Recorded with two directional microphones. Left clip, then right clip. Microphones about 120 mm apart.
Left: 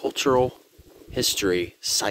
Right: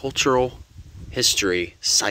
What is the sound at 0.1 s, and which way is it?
Speech, 20° left (ahead or behind).